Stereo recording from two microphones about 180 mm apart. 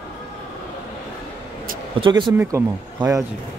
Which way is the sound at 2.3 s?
10° right (ahead or behind).